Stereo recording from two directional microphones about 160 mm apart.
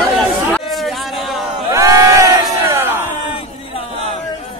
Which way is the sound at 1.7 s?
20° right (ahead or behind).